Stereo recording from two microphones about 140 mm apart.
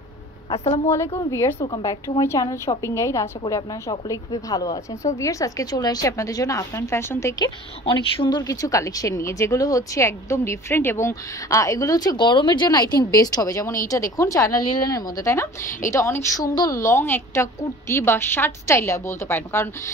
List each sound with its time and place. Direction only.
0.8 s a woman's voice: 20° left (ahead or behind)
7.8 s a woman's voice: 35° left (ahead or behind); by 19.7 s 15° left (ahead or behind)